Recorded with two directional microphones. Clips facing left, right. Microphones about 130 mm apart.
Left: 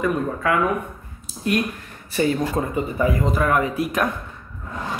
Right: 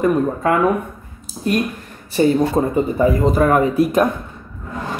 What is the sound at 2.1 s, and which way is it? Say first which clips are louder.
Speech: right 6 dB; 30° right (ahead or behind).